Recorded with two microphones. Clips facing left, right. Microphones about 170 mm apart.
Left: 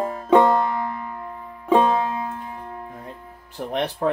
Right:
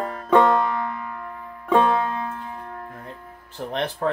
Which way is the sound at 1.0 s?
25° left (ahead or behind).